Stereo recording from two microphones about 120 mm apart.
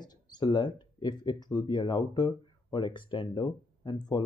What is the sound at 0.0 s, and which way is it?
Speech, 35° left (ahead or behind).